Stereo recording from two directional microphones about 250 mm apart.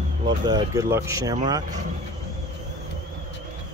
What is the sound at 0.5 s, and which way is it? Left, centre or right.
Speech, centre.